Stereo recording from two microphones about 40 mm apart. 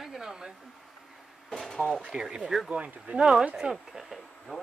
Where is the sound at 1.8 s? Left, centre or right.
Centre.